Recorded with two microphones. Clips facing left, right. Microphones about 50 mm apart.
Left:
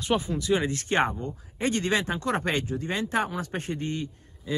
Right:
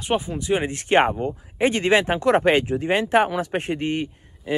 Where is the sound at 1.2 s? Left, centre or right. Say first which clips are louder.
Right 8 dB; right.